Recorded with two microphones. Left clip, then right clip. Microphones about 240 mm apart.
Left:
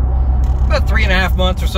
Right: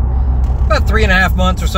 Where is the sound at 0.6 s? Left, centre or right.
Centre.